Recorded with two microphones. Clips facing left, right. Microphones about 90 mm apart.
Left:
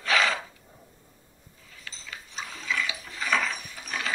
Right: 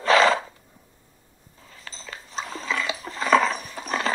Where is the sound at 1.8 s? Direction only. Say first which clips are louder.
Right 3 dB; 35° right (ahead or behind).